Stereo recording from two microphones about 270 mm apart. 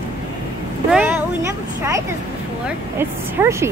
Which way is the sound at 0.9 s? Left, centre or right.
Centre.